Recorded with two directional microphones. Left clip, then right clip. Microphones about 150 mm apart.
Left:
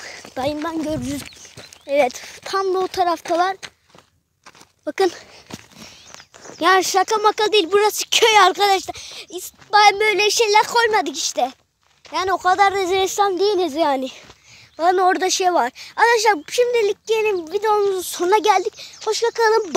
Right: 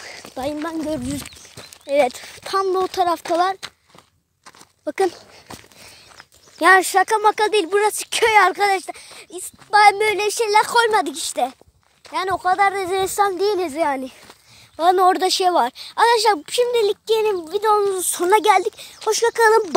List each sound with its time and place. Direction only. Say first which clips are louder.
0.0 s speech: left 3 dB; centre (ahead or behind)
4.8 s a sound: left 1 dB; centre (ahead or behind)
6.6 s speech: right 2 dB; 5° right (ahead or behind)
9.3 s speech: even; 5° right (ahead or behind)
10.1 s speech: left 4 dB; 20° left (ahead or behind)
10.6 s speech: even; 10° right (ahead or behind); by 13.8 s 10° left (ahead or behind)
13.8 s speech: left 3 dB; 25° left (ahead or behind)
14.8 s speech: right 1 dB; 10° right (ahead or behind)
18.9 s speech: right 1 dB; 35° right (ahead or behind)